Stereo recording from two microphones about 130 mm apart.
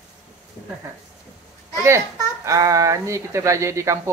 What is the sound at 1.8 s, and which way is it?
A child's voice, 20° right (ahead or behind).